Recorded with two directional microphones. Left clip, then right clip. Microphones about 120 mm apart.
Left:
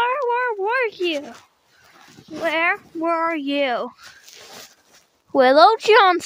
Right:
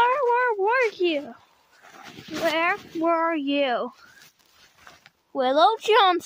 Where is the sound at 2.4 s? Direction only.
15° left (ahead or behind).